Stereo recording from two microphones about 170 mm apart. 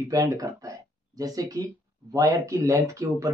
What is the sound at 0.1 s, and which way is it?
Speech, 20° right (ahead or behind).